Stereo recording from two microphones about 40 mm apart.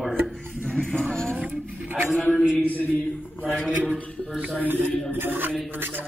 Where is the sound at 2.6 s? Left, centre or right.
Left.